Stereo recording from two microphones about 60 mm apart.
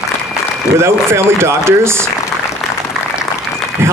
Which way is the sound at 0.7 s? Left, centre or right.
Right.